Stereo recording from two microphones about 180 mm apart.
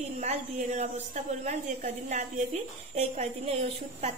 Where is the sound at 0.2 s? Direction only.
40° right (ahead or behind).